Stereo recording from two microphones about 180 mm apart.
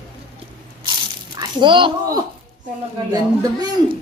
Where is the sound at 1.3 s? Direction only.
25° right (ahead or behind).